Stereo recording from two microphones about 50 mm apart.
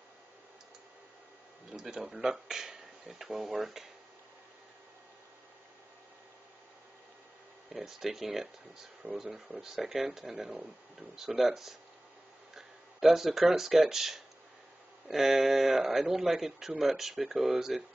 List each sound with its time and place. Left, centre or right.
1.7 s speech: centre
7.8 s speech: centre
10.5 s speech: right
11.1 s speech: centre